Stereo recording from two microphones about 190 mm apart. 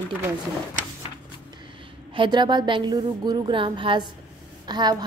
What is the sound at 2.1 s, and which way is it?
A woman's voice, 25° right (ahead or behind).